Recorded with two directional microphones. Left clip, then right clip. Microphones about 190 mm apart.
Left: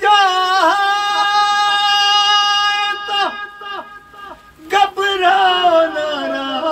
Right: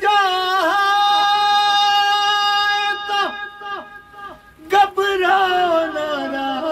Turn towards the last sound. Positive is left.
turn(degrees=-15)  # may be behind; listen again after turning